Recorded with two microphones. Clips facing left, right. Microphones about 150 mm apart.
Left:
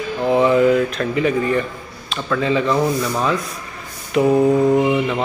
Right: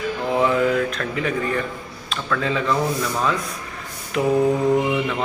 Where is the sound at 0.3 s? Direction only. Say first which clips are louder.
Left 6 dB; centre (ahead or behind).